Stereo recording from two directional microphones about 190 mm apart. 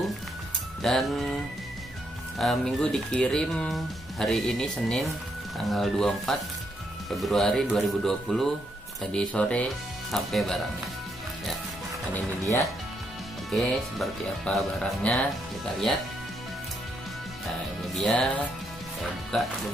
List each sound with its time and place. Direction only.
0.8 s speech: centre (ahead or behind)
2.3 s speech: centre (ahead or behind)
12.1 s speech: 15° left (ahead or behind)
13.5 s speech: centre (ahead or behind)
17.9 s speech: centre (ahead or behind)